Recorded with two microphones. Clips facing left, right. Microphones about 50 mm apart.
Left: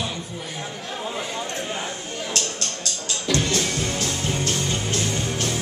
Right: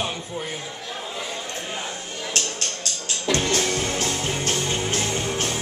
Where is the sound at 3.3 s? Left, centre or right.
Right.